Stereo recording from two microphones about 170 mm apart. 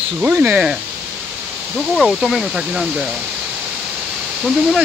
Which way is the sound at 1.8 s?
Centre (ahead or behind).